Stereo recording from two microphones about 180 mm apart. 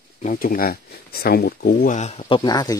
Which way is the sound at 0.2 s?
45° left (ahead or behind).